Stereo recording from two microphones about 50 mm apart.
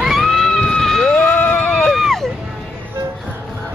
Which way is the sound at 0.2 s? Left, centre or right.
Centre.